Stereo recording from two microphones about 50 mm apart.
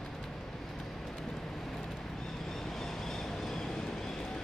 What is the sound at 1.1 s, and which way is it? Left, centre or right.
Vehicle, centre.